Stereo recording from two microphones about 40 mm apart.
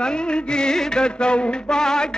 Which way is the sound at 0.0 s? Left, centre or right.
Left.